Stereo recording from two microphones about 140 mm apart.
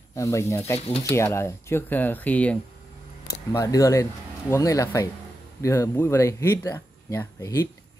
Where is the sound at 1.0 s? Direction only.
20° left (ahead or behind).